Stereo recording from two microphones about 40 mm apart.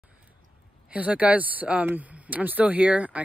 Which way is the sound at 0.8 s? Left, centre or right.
Right.